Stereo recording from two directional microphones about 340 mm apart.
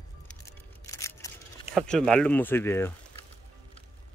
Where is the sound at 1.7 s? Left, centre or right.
Centre.